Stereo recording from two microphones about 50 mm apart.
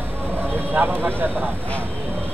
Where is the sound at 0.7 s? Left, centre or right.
Right.